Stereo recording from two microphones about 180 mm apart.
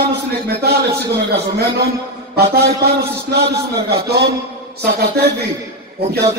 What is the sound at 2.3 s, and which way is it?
A man's voice, 60° right (ahead or behind).